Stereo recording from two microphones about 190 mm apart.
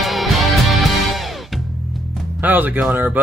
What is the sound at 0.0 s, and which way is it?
Music, centre (ahead or behind).